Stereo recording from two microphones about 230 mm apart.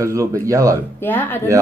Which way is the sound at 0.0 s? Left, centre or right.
Centre.